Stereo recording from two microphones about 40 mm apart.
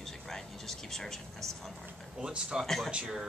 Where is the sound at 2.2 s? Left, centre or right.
Centre.